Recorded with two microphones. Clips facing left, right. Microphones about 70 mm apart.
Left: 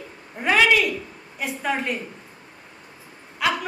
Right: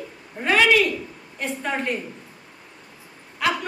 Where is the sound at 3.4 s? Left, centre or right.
Centre.